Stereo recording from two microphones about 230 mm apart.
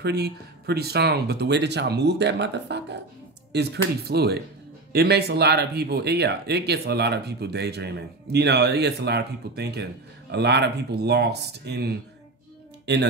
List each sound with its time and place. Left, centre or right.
0.0 s speech: right